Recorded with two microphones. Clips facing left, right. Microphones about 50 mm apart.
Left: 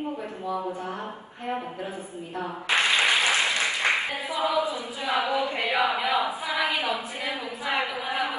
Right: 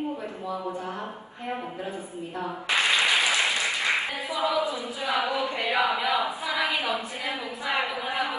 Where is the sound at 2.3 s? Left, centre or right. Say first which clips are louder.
Left 1 dB; left.